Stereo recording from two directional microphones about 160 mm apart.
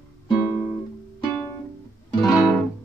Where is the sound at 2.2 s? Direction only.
25° left (ahead or behind).